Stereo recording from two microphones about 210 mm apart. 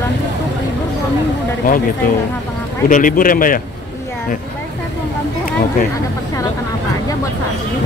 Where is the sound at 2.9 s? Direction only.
40° left (ahead or behind).